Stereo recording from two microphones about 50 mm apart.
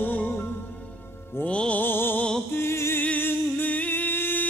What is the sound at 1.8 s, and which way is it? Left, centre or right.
Music, left.